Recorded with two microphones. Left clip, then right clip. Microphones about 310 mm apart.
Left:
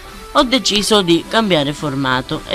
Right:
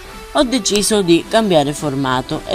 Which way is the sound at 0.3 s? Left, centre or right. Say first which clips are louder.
Left 2 dB; centre.